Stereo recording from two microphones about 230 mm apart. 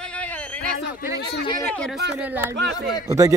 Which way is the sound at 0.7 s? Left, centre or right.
Left.